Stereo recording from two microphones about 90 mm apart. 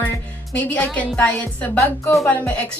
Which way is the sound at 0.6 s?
15° left (ahead or behind).